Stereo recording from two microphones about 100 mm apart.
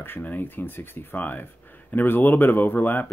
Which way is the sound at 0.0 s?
20° left (ahead or behind).